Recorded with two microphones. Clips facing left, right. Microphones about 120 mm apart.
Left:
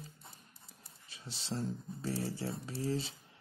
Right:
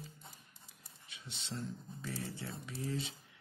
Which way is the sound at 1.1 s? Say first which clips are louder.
Left 5 dB; 35° left (ahead or behind).